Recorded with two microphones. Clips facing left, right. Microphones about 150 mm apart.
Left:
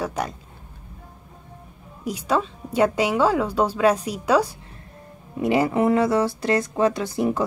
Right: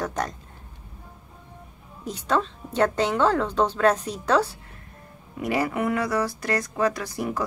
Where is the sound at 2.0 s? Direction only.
10° left (ahead or behind).